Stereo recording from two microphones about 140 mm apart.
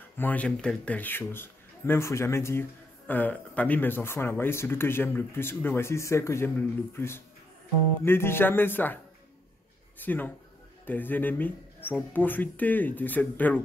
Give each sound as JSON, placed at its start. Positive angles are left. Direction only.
{"t": 0.2, "sound": "speech", "side_deg": 10}